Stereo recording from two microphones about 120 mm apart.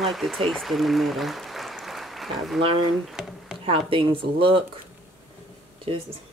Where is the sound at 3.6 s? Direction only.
50° right (ahead or behind).